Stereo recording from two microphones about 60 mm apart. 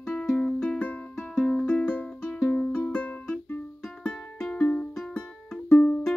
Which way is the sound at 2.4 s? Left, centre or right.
Centre.